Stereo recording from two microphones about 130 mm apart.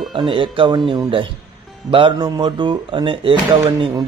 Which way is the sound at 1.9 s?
40° right (ahead or behind).